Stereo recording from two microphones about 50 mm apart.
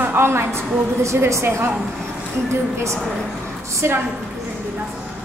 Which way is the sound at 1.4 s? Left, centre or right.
Right.